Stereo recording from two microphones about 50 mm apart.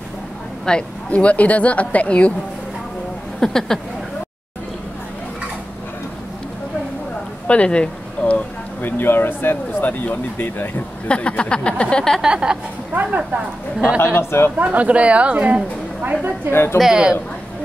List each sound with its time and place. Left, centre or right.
0.7 s speech: left
3.3 s speech: centre
7.4 s a sound: left
8.8 s speech: left
11.1 s speech: left
12.2 s speech: centre
12.9 s speech: right
13.9 s a man's voice: left
14.6 s a woman's voice: right
16.4 s a man's voice: left
16.9 s a woman's voice: centre